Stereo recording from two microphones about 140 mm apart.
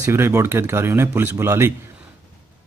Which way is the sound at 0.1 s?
15° right (ahead or behind).